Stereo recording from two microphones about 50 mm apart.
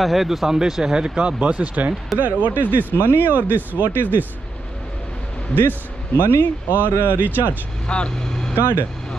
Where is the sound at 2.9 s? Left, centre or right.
Left.